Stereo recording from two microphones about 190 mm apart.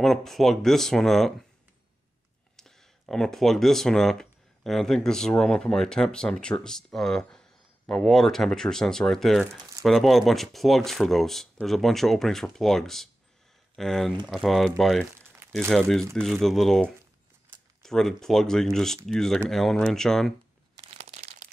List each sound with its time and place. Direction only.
0.0 s speech: centre (ahead or behind)
2.5 s speech: centre (ahead or behind)
21.0 s a sound: 35° right (ahead or behind)